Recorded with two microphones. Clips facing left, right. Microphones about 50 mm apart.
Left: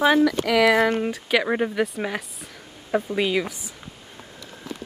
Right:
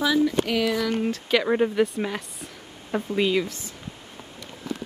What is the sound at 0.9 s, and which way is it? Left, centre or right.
Speech, centre.